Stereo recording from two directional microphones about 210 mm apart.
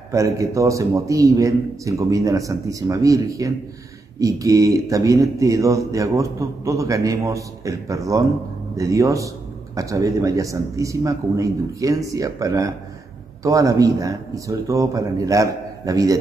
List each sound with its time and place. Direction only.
0.1 s speech: 15° right (ahead or behind)